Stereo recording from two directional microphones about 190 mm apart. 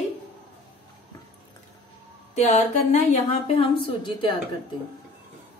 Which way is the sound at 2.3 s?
35° left (ahead or behind).